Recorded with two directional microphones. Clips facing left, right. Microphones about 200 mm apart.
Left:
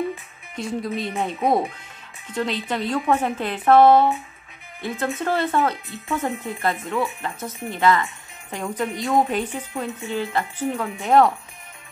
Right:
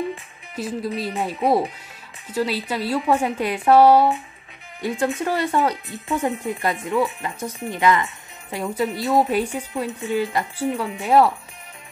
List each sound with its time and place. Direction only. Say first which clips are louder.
0.6 s speech: even; 5° right (ahead or behind)
11.1 s speech: even; 5° right (ahead or behind)